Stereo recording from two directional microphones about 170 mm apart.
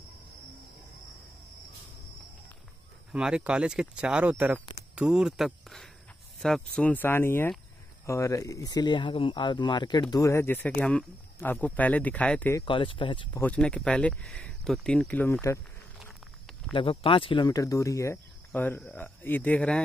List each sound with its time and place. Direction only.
3.1 s speech: 5° right (ahead or behind)
12.5 s speech: 30° left (ahead or behind)
13.4 s speech: 5° left (ahead or behind)
16.7 s speech: 30° left (ahead or behind); by 19.8 s 10° left (ahead or behind)